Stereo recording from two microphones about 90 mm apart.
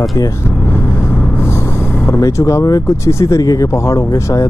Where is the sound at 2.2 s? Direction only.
35° left (ahead or behind).